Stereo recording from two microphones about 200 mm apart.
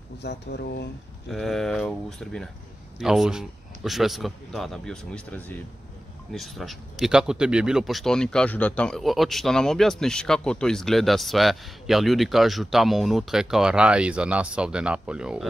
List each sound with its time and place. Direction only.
0.2 s speech: 55° left (ahead or behind)
1.3 s speech: centre (ahead or behind)